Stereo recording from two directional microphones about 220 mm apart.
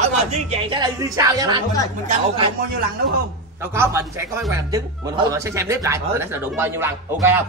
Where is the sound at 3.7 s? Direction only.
10° right (ahead or behind).